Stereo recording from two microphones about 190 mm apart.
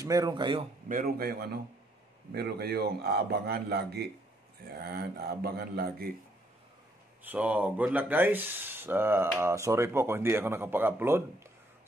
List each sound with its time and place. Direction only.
0.0 s speech: 20° right (ahead or behind)
0.8 s a man's voice: 50° right (ahead or behind)
7.2 s speech: 10° right (ahead or behind)